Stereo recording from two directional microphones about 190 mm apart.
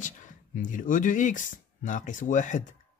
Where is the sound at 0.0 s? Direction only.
40° left (ahead or behind).